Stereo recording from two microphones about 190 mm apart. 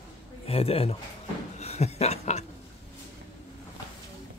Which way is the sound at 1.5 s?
35° left (ahead or behind).